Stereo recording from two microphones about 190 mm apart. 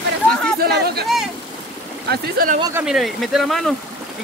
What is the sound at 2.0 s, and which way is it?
Speech, 55° right (ahead or behind).